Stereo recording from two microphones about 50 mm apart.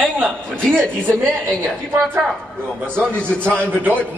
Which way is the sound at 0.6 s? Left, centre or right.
Centre.